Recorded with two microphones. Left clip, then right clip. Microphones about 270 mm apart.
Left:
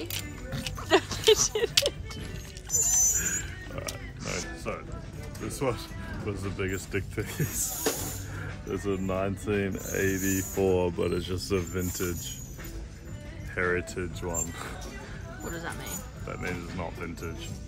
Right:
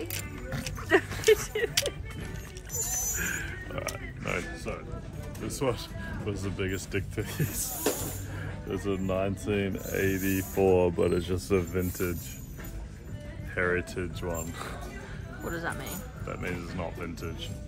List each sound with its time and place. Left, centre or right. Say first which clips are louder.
0.0 s music: left 1 dB; centre
6.2 s speech: left 1 dB; centre
10.9 s speech: right 2 dB; centre
13.6 s speech: even; centre